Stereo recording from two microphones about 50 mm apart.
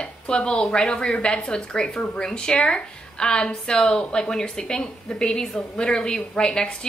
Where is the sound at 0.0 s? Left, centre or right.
Centre.